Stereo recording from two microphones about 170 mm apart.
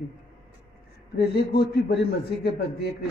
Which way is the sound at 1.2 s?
70° left (ahead or behind).